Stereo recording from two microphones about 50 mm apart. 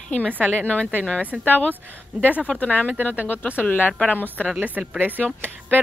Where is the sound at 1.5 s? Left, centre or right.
Left.